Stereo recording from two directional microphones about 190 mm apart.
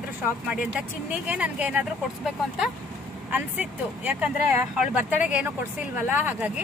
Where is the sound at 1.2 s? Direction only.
5° right (ahead or behind).